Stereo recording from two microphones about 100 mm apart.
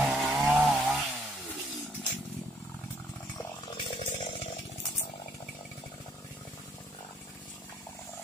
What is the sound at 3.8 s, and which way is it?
Chainsaw, 60° left (ahead or behind).